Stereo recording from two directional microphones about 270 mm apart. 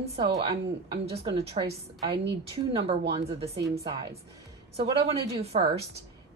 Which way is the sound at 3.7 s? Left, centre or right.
Centre.